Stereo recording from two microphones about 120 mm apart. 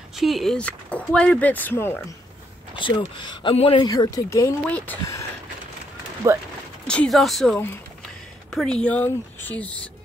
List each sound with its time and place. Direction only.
0.1 s speech: centre (ahead or behind); by 2.0 s 15° left (ahead or behind)
2.8 s speech: 40° left (ahead or behind); by 4.6 s 25° left (ahead or behind)
4.6 s speech: 15° left (ahead or behind)
6.2 s speech: 25° right (ahead or behind)
6.9 s speech: 5° left (ahead or behind)